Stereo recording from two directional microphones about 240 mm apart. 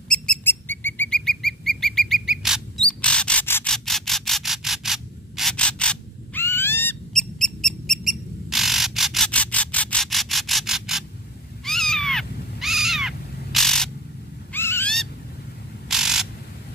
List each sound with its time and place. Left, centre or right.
0.1 s bird: centre
11.6 s cat: centre
14.5 s a sound: centre